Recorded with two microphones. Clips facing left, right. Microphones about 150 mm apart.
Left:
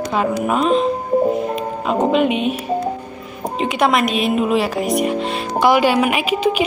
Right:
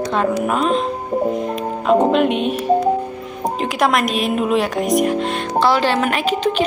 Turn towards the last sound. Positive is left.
turn(degrees=5)  # may be behind; listen again after turning